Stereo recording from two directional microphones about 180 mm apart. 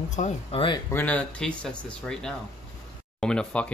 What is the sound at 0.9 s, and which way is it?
Speech, 10° left (ahead or behind).